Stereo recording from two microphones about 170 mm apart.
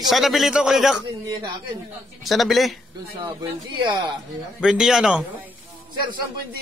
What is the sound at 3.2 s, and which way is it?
Speech, 25° right (ahead or behind).